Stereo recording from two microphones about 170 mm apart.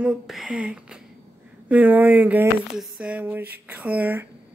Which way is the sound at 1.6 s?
10° right (ahead or behind).